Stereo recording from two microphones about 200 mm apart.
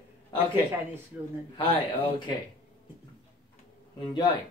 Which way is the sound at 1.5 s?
25° left (ahead or behind).